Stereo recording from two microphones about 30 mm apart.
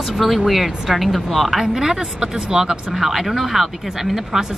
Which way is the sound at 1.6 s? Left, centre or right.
Right.